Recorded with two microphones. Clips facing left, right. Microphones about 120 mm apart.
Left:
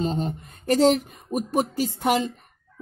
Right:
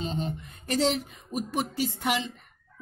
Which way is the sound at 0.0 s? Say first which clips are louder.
Left 6 dB; 40° left (ahead or behind).